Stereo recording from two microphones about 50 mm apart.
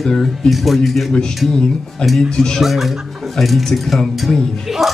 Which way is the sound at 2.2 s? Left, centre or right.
Centre.